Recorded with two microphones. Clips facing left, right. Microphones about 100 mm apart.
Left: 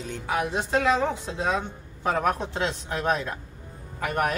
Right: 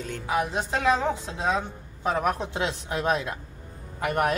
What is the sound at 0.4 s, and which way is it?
Speech, centre (ahead or behind).